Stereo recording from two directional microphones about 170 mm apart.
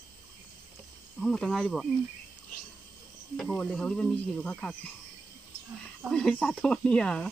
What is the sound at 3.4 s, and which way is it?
Speech, 5° left (ahead or behind).